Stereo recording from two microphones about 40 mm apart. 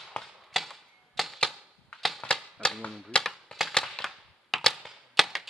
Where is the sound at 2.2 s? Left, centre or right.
Left.